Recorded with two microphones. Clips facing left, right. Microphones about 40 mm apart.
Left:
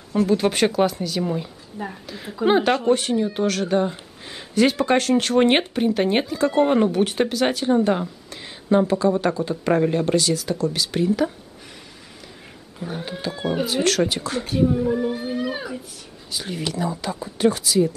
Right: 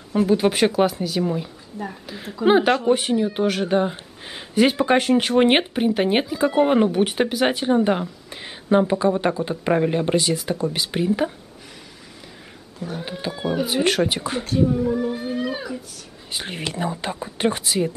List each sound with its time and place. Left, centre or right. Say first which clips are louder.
0.1 s speech: right 1 dB; centre
12.8 s speech: even; centre
13.3 s speech: even; centre
13.8 s speech: even; right
14.4 s speech: even; centre
16.3 s speech: left 1 dB; right